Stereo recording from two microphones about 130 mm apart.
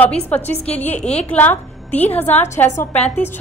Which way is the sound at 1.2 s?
15° left (ahead or behind).